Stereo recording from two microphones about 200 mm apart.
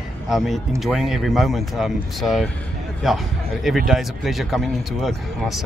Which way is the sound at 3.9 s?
Centre (ahead or behind).